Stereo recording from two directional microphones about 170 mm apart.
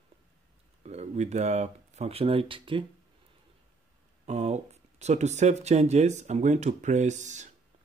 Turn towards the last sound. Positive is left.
turn(degrees=-45)  # may be behind; listen again after turning